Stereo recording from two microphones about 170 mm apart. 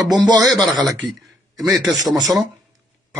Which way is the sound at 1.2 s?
Centre (ahead or behind).